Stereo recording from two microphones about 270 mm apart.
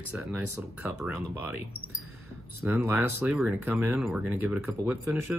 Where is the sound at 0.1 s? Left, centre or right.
Centre.